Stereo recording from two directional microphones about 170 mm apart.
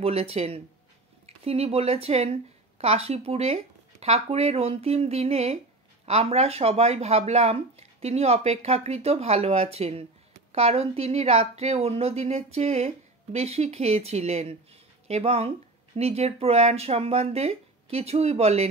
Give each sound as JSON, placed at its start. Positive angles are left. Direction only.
{"t": 0.0, "sound": "speech", "side_deg": -35}